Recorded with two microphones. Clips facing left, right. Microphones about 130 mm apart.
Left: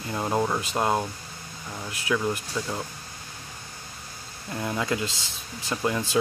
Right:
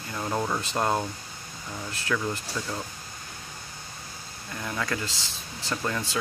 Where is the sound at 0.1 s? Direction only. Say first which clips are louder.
Left 3 dB; 25° left (ahead or behind).